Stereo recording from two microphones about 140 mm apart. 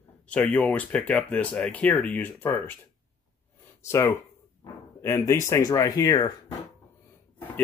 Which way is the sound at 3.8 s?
20° left (ahead or behind).